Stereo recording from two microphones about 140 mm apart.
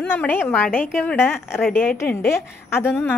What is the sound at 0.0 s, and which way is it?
A woman's voice, 10° left (ahead or behind).